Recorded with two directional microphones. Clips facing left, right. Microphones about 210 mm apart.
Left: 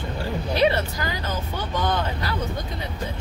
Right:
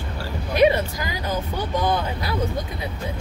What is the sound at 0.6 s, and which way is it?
Speech, 15° right (ahead or behind).